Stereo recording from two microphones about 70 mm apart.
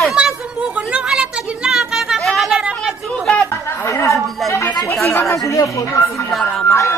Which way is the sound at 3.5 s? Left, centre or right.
Left.